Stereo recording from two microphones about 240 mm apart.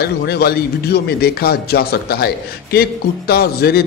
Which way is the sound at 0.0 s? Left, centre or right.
Left.